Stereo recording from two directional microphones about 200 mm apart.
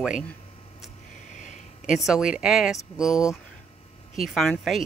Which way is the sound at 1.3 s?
40° left (ahead or behind).